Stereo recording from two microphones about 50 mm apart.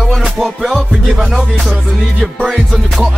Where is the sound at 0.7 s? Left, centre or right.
Centre.